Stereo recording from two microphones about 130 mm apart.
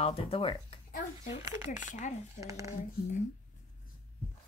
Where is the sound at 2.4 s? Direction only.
25° right (ahead or behind).